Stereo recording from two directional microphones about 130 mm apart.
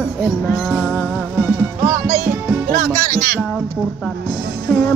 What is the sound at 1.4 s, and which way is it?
Music, 20° right (ahead or behind).